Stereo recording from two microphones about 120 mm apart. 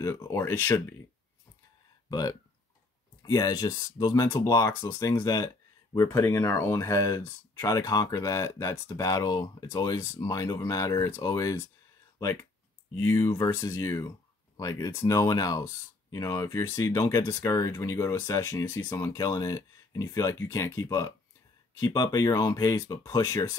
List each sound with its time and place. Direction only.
0.0 s speech: 25° left (ahead or behind)
2.0 s speech: 30° left (ahead or behind)
17.0 s speech: 35° left (ahead or behind)